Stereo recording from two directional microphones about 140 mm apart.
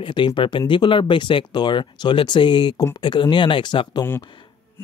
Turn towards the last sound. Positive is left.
turn(degrees=35)  # may be behind; listen again after turning